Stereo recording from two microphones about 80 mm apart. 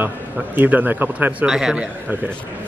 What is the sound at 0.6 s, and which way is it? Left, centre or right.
Speech, right.